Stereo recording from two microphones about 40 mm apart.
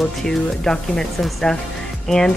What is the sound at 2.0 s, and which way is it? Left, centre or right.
Speech, centre.